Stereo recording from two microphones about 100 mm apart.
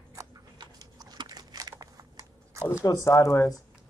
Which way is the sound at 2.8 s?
30° left (ahead or behind).